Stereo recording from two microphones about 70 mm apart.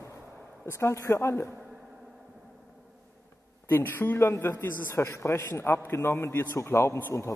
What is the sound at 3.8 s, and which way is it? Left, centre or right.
A man's voice, left.